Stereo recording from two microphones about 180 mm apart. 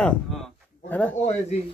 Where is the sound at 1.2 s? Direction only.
40° left (ahead or behind).